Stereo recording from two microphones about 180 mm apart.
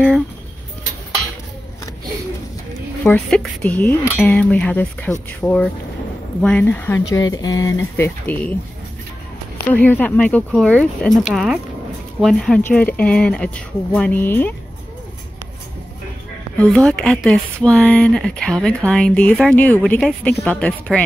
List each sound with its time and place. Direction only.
3.0 s speech: 5° left (ahead or behind)
7.9 s speech: 10° left (ahead or behind)
9.8 s speech: 10° left (ahead or behind)
16.5 s speech: 5° left (ahead or behind)